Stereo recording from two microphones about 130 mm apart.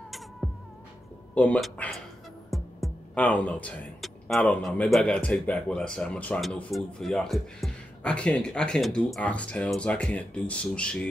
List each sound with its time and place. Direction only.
0.4 s music: 5° left (ahead or behind)
1.3 s speech: 10° left (ahead or behind)
2.5 s music: centre (ahead or behind)
3.2 s speech: 10° left (ahead or behind)